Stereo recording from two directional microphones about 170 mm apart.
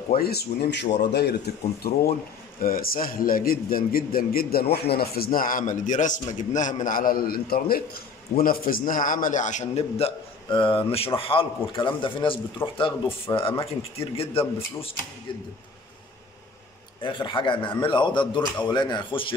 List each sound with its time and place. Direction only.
0.2 s speech: 70° left (ahead or behind)
1.5 s a man's voice: 65° left (ahead or behind); by 12.4 s 30° left (ahead or behind)
12.6 s speech: 15° left (ahead or behind)
13.4 s speech: 35° left (ahead or behind)
17.0 s a man's voice: 30° left (ahead or behind)